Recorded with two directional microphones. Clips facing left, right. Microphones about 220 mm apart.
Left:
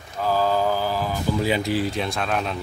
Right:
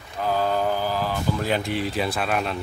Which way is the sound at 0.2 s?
Centre (ahead or behind).